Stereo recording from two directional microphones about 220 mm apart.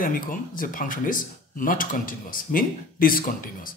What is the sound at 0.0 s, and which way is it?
Speech, 40° left (ahead or behind).